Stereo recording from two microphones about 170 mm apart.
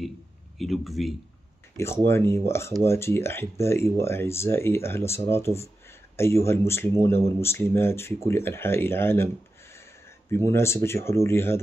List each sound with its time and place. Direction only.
0.6 s speech: centre (ahead or behind)
2.0 s speech: 15° left (ahead or behind)
10.3 s speech: 15° left (ahead or behind)